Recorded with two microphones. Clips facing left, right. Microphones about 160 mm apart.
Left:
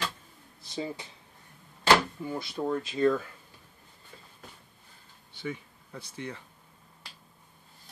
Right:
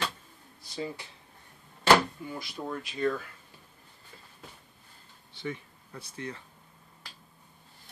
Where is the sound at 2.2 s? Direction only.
30° left (ahead or behind).